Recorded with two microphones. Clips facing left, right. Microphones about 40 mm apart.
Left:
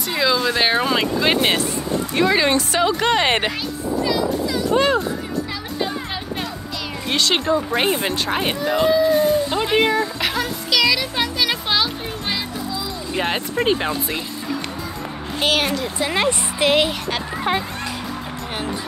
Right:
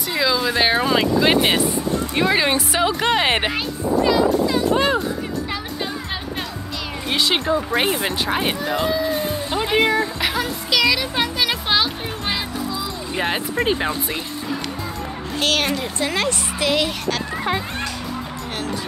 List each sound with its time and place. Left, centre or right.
0.1 s speech: centre
3.5 s music: right
4.7 s speech: centre
7.1 s speech: centre
8.0 s a sound: centre
13.1 s speech: centre
15.4 s a woman's voice: centre
16.1 s speech: centre
17.5 s a woman's voice: centre